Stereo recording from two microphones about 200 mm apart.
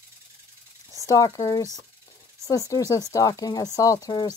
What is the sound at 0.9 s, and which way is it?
Speech, 15° left (ahead or behind).